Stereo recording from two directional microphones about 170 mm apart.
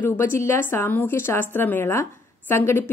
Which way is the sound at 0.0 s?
15° left (ahead or behind).